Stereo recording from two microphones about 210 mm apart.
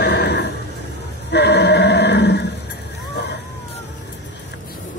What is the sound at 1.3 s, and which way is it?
Choir, 55° left (ahead or behind).